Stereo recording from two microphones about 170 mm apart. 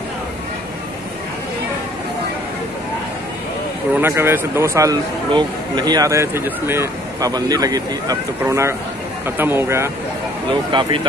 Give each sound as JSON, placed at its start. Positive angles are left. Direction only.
{"t": 3.9, "sound": "a man's voice", "side_deg": -15}
{"t": 10.5, "sound": "speech", "side_deg": -25}